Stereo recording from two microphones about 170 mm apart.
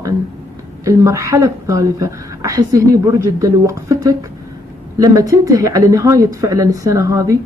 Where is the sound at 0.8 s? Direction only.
15° right (ahead or behind).